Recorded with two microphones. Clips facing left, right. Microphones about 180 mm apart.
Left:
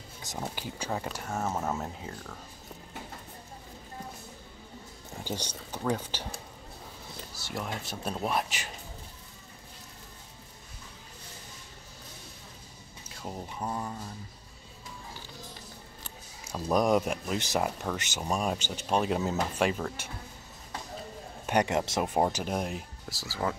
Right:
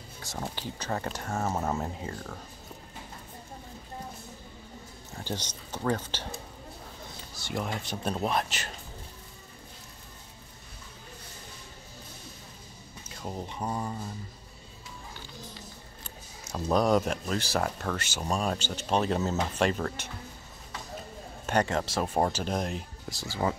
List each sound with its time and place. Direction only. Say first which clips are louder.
0.4 s speech: even; 10° left (ahead or behind)
1.5 s speech: right 3 dB; 10° right (ahead or behind)
5.2 s speech: even; 10° left (ahead or behind)
7.3 s speech: right 3 dB; 5° left (ahead or behind)
13.1 s speech: right 2 dB; centre (ahead or behind)
16.7 s speech: right 1 dB; 10° left (ahead or behind)
21.5 s speech: left 1 dB; 15° left (ahead or behind)